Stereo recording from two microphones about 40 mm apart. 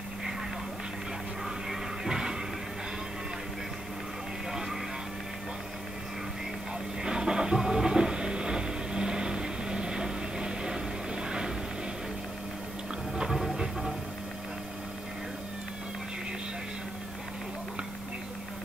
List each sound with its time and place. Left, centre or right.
1.7 s music: centre
4.5 s vehicle: centre
7.0 s music: centre
13.1 s music: centre